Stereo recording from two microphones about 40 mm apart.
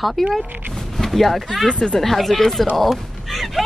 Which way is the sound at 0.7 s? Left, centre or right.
Centre.